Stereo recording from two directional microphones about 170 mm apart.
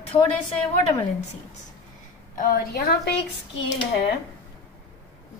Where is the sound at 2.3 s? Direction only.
65° left (ahead or behind).